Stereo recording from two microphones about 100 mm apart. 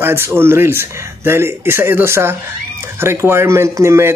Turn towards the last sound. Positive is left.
turn(degrees=-30)  # may be behind; listen again after turning